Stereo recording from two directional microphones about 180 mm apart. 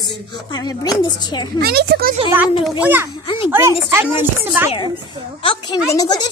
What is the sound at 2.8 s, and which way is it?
A child's voice, 10° right (ahead or behind).